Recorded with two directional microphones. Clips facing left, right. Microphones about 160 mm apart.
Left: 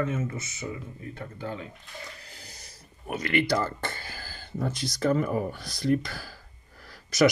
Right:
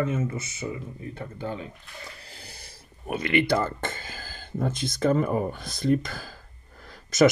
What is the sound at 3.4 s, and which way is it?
Speech, 55° right (ahead or behind).